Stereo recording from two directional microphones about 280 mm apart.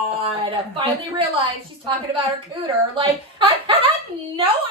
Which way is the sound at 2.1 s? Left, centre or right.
Centre.